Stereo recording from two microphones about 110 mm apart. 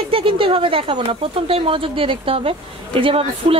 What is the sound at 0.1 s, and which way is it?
Speech, 55° right (ahead or behind).